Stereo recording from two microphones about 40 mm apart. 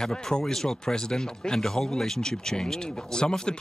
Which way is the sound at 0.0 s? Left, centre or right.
Centre.